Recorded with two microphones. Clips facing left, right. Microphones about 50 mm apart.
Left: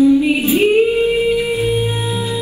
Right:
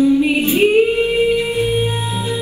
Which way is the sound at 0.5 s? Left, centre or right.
Centre.